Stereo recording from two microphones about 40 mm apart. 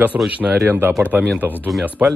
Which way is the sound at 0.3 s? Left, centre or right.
Right.